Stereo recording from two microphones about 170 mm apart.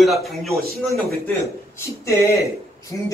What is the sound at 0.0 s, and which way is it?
Speech, centre (ahead or behind).